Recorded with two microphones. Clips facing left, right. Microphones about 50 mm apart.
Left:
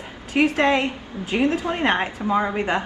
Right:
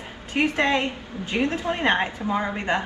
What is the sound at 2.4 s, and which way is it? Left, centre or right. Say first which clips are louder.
Speech: left 1 dB; centre.